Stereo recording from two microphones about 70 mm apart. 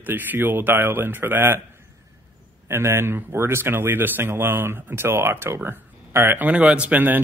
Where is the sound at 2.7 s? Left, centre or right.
Right.